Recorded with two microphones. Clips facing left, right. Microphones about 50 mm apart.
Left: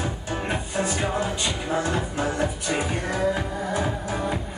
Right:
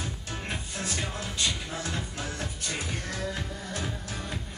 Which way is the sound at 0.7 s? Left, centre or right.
Centre.